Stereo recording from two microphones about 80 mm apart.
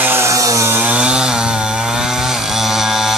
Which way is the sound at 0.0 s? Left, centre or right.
Right.